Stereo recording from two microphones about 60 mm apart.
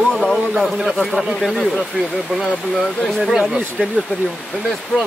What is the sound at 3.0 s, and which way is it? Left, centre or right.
Speech, centre.